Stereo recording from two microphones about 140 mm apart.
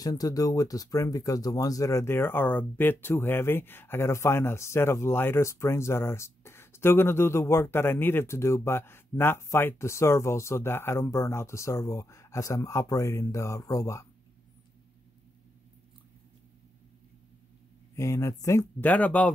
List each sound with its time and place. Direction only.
0.0 s speech: 25° left (ahead or behind)
17.9 s speech: 20° left (ahead or behind)